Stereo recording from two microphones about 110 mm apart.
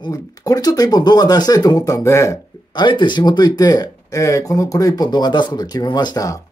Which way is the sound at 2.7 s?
45° left (ahead or behind).